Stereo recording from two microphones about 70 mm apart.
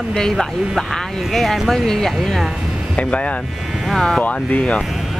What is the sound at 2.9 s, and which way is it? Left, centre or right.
Speech, centre.